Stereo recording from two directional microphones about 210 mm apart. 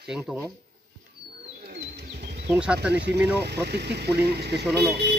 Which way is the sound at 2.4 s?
5° right (ahead or behind).